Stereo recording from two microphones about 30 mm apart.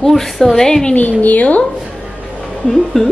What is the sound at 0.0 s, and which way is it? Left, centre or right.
Speech, centre.